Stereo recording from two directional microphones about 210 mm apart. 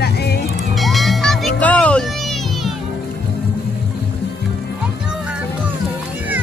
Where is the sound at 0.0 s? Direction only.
50° left (ahead or behind).